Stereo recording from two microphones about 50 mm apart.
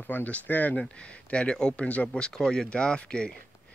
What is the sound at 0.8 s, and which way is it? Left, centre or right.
Speech, left.